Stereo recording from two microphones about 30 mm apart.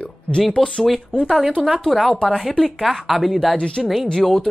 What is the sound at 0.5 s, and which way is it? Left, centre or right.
Speech, left.